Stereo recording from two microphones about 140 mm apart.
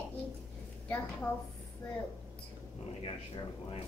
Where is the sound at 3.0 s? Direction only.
45° left (ahead or behind).